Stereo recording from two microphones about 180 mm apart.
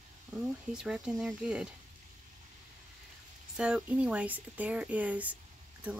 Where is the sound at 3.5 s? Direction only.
5° right (ahead or behind).